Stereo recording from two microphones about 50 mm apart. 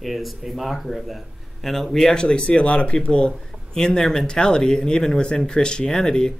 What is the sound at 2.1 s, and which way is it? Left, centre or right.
Speech, centre.